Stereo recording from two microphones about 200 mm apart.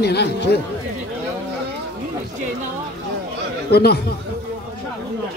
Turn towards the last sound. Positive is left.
turn(degrees=55)  # may be behind; listen again after turning